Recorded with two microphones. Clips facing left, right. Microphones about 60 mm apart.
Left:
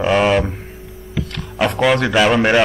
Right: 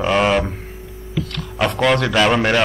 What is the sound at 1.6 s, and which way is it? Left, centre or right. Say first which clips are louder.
Speech: left 1 dB; centre.